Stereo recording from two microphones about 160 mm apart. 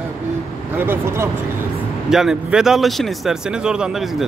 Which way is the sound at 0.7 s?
15° right (ahead or behind).